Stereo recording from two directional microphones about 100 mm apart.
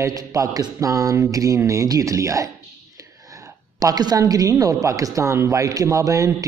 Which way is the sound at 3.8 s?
40° right (ahead or behind).